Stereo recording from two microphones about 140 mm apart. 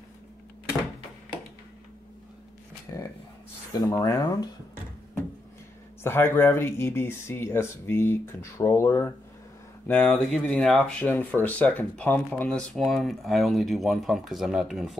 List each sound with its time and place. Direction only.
2.9 s speech: 20° left (ahead or behind)
6.0 s speech: 15° left (ahead or behind); by 15.0 s centre (ahead or behind)